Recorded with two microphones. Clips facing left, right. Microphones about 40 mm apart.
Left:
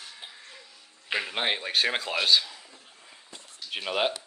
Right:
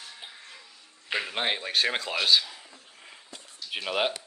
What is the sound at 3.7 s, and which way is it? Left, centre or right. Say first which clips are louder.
Speech: even; centre.